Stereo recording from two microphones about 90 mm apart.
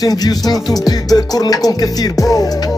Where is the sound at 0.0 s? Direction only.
45° left (ahead or behind).